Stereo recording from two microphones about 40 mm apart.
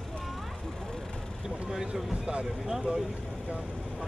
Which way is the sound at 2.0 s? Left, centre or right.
Centre.